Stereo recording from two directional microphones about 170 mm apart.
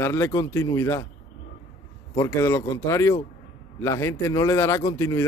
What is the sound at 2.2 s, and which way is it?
A man's voice, 15° left (ahead or behind).